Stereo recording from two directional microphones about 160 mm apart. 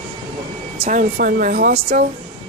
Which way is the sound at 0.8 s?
60° right (ahead or behind).